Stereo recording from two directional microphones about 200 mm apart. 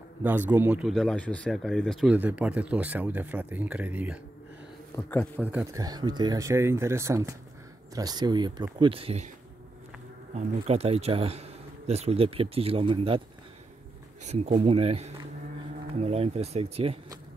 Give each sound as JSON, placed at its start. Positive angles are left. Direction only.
{"t": 0.2, "sound": "speech", "side_deg": -10}
{"t": 4.9, "sound": "a man's voice", "side_deg": 10}
{"t": 5.4, "sound": "speech", "side_deg": -10}
{"t": 5.8, "sound": "speech", "side_deg": -20}
{"t": 10.3, "sound": "speech", "side_deg": -30}
{"t": 14.2, "sound": "speech", "side_deg": -35}